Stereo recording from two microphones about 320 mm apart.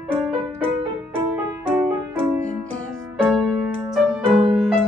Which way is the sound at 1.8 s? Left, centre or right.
Centre.